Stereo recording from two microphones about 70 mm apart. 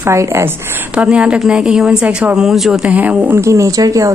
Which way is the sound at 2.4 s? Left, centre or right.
Centre.